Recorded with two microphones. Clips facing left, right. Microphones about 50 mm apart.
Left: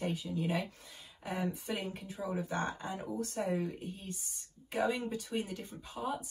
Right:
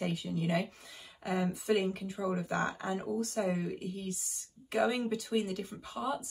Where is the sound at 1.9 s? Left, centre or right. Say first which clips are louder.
Right 4 dB; right.